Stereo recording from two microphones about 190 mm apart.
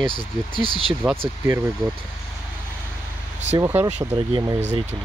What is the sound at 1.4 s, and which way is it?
Speech, 15° right (ahead or behind).